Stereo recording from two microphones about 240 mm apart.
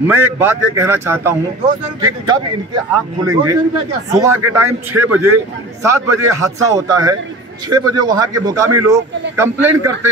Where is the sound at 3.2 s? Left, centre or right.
Centre.